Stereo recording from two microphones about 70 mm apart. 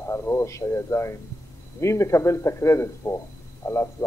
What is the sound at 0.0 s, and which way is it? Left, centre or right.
A man's voice, left.